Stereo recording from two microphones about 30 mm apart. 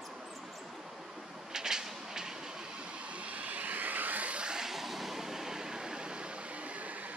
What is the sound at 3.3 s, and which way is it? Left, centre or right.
Vehicle, right.